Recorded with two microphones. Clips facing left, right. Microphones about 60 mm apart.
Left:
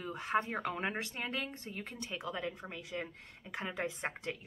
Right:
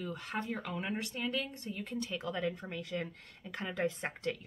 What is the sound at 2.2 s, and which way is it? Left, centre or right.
A woman's voice, centre.